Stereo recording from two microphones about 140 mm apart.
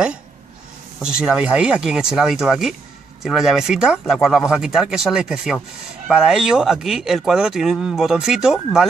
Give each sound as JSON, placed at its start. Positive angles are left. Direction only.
{"t": 1.0, "sound": "speech", "side_deg": -5}